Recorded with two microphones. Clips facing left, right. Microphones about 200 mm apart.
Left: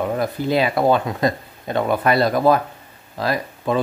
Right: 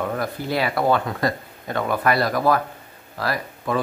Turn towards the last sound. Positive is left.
turn(degrees=20)  # may be behind; listen again after turning